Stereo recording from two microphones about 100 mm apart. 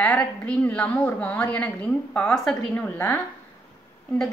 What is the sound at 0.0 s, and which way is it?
A woman's voice, 10° left (ahead or behind).